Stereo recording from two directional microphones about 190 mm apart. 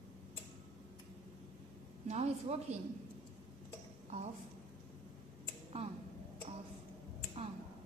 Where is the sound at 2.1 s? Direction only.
35° right (ahead or behind).